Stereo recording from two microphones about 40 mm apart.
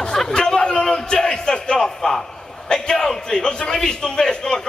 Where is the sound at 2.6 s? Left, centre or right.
Centre.